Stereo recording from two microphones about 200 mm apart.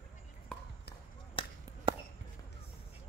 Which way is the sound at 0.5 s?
5° left (ahead or behind).